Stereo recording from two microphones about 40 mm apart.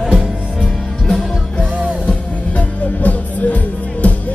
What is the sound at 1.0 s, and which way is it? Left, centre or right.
Music, centre.